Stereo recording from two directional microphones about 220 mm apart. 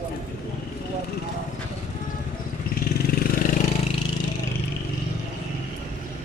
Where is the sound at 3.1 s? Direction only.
40° left (ahead or behind).